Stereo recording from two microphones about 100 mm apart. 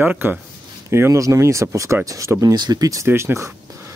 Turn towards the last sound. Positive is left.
turn(degrees=-25)  # may be behind; listen again after turning